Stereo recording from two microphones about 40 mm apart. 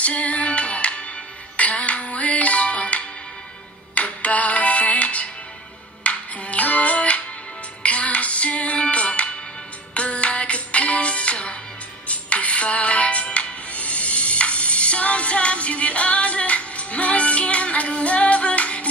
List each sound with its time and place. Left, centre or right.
0.0 s music: left